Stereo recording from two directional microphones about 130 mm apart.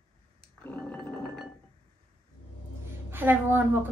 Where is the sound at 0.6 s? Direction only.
10° left (ahead or behind).